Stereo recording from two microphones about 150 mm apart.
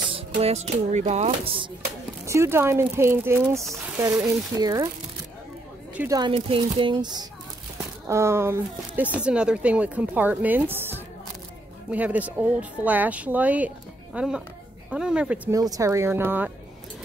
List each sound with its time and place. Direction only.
0.1 s speech: 45° right (ahead or behind)
2.2 s speech: 20° right (ahead or behind)
4.1 s speech: 5° right (ahead or behind)
4.6 s speech: 25° right (ahead or behind)
6.0 s speech: 25° right (ahead or behind)
8.1 s speech: 20° right (ahead or behind)
15.5 s speech: 25° right (ahead or behind)